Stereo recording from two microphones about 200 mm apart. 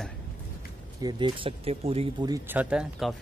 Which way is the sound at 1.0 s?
25° right (ahead or behind).